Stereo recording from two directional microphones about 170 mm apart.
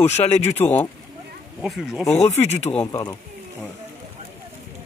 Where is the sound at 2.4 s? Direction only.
40° left (ahead or behind).